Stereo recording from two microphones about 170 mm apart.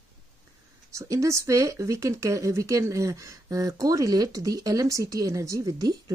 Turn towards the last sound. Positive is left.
turn(degrees=-20)  # may be behind; listen again after turning